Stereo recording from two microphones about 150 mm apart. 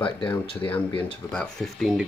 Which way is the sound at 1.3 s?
5° left (ahead or behind).